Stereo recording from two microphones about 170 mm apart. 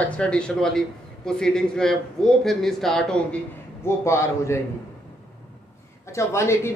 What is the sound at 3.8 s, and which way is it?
Speech, 15° left (ahead or behind).